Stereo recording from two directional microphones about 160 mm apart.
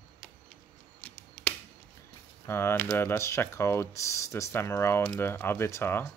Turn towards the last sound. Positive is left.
turn(degrees=15)  # may be behind; listen again after turning